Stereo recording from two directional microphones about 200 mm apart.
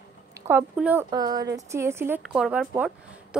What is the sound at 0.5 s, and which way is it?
Speech, 10° right (ahead or behind).